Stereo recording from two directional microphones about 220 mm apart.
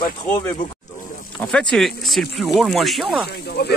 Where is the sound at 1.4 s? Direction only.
5° left (ahead or behind).